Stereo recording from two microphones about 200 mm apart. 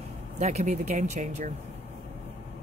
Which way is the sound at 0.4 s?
35° right (ahead or behind).